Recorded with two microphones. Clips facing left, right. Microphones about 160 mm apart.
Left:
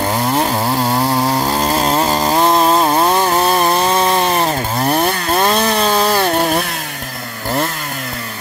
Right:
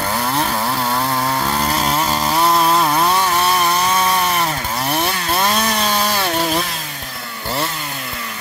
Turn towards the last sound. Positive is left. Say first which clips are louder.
# left 4 dB
turn(degrees=55)  # may be behind; listen again after turning